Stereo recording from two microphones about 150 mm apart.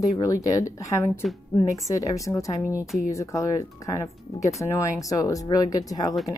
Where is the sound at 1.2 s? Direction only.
Centre (ahead or behind).